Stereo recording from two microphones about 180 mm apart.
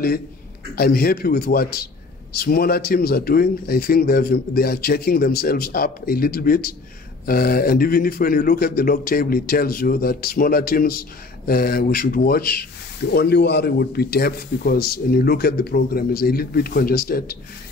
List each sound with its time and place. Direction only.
0.7 s speech: 60° left (ahead or behind)